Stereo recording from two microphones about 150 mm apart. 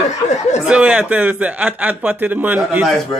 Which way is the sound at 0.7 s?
5° right (ahead or behind).